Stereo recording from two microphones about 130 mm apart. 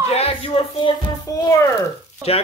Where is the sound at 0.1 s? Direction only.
45° left (ahead or behind).